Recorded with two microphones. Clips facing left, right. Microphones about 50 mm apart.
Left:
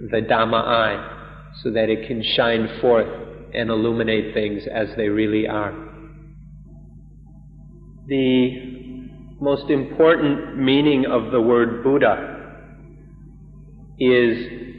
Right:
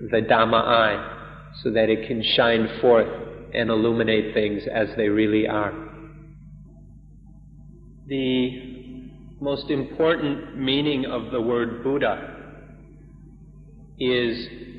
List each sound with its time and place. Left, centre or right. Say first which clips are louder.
0.0 s a man's voice: even; centre
8.1 s a man's voice: left 6 dB; left
8.5 s music: left 4 dB; centre
10.1 s a man's voice: left 6 dB; centre
10.4 s a man's voice: left 7 dB; left
13.9 s a man's voice: left 7 dB; left